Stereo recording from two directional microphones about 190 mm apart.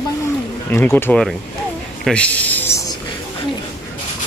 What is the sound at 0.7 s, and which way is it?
Speech, 10° left (ahead or behind).